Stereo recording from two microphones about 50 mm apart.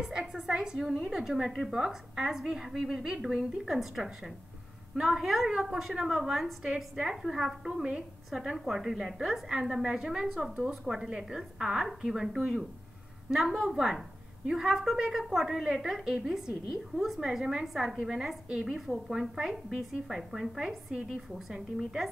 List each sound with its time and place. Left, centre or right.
0.0 s a woman's voice: centre